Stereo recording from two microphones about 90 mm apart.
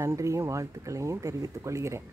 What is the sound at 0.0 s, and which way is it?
Speech, 35° right (ahead or behind).